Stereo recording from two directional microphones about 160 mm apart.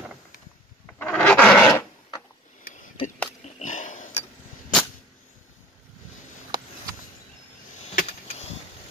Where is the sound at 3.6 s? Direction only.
55° left (ahead or behind).